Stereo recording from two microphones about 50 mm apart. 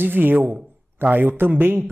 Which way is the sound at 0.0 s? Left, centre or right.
Right.